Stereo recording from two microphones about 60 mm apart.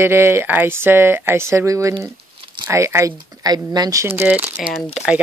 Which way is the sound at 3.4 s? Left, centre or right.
Right.